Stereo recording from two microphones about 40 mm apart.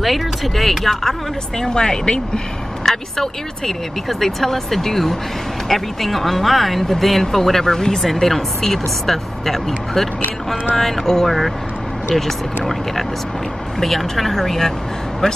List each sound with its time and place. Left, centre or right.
0.0 s speech: centre
1.6 s speech: centre
2.8 s speech: centre
13.7 s speech: centre